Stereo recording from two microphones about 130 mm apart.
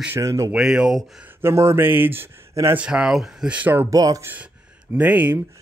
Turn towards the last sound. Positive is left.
turn(degrees=-10)  # may be behind; listen again after turning